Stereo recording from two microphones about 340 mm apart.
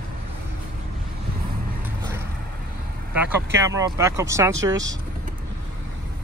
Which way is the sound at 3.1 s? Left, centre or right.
Centre.